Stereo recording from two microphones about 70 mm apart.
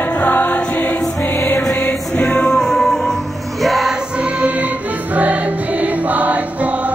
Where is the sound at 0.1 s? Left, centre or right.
Left; by 3.9 s centre.